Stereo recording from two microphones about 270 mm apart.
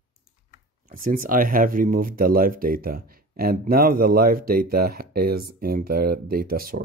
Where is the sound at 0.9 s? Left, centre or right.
Right.